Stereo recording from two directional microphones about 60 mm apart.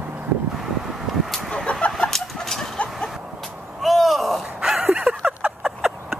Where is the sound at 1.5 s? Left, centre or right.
Centre.